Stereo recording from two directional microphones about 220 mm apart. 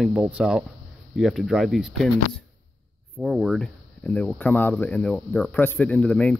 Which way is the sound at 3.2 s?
Centre (ahead or behind).